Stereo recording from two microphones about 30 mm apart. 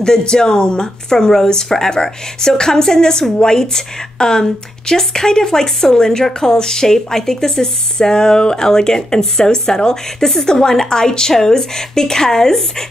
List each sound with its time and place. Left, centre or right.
0.0 s speech: left
1.1 s speech: centre